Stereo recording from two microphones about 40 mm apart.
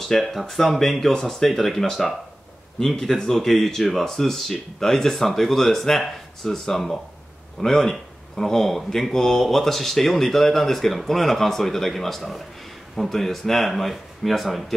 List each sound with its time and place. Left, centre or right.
0.3 s speech: centre